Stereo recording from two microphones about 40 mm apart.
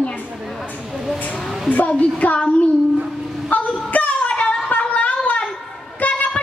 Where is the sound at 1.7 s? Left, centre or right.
Left.